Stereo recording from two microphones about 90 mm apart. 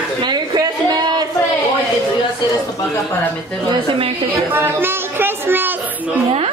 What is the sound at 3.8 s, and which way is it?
Speech, 80° right.